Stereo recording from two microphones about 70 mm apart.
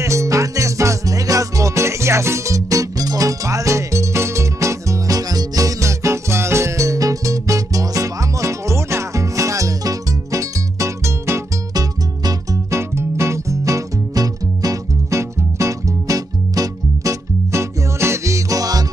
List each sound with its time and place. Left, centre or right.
0.0 s music: right
11.7 s music: right
12.7 s music: right